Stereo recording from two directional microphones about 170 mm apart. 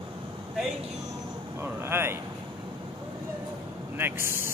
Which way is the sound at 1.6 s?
15° right (ahead or behind).